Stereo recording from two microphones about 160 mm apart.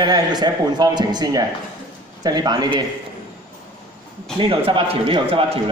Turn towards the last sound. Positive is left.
turn(degrees=-35)  # may be behind; listen again after turning